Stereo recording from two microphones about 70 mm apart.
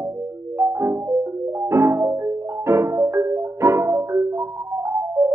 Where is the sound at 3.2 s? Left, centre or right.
Right.